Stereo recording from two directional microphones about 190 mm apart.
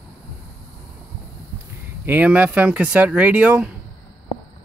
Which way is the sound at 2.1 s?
10° right (ahead or behind).